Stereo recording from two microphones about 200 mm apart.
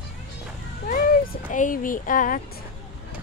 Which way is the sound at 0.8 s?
40° left (ahead or behind).